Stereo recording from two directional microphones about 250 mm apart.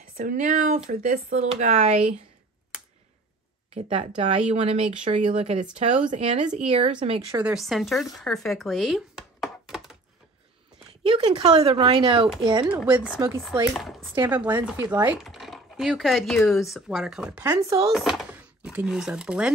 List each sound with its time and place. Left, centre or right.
0.2 s speech: right
3.7 s speech: right; by 9.9 s centre
11.1 s speech: right
14.1 s speech: centre